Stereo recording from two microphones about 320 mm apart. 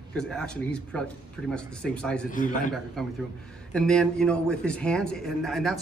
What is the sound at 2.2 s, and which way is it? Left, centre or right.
Speech, left.